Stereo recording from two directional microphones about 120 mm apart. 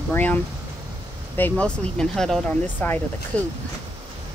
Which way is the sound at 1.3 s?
15° left (ahead or behind).